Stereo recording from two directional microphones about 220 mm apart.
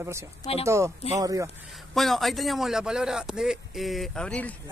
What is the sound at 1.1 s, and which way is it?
Speech, 15° right (ahead or behind).